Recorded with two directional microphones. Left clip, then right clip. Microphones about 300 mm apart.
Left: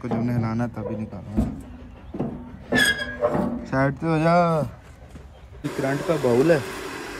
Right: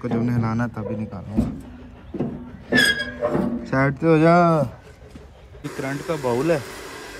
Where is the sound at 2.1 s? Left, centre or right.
Centre.